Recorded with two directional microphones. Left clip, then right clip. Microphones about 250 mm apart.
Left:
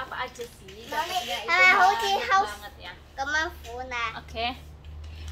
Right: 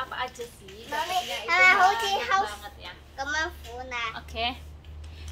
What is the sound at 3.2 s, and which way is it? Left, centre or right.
Speech, centre.